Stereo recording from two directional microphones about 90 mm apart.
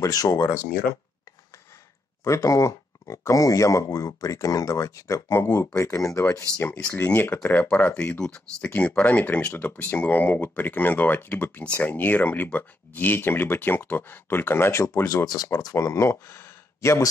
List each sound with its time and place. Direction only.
0.0 s speech: 40° left (ahead or behind)
2.2 s speech: 35° left (ahead or behind)
7.1 s speech: 20° left (ahead or behind)
15.2 s speech: 40° left (ahead or behind)